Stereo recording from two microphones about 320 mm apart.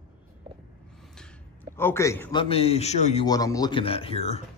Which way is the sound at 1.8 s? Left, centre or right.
Centre.